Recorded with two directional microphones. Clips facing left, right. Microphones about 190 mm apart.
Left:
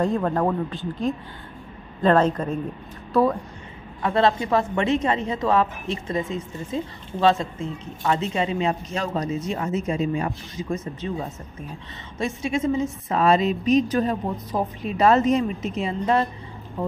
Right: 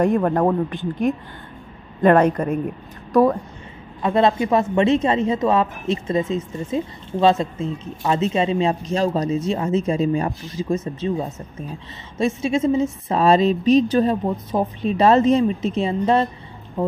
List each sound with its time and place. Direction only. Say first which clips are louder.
0.0 s a woman's voice: right 4 dB; 15° right (ahead or behind)